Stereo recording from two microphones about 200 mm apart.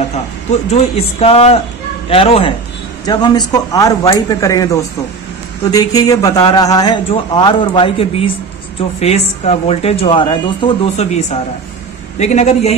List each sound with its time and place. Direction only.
0.5 s a man's voice: 30° left (ahead or behind)